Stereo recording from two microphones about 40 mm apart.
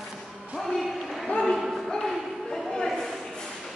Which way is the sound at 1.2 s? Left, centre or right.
Centre.